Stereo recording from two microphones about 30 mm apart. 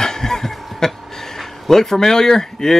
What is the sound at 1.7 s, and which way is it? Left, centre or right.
Speech, centre.